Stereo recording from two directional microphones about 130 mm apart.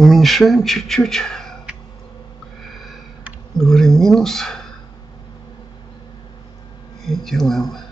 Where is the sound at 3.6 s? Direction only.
5° left (ahead or behind).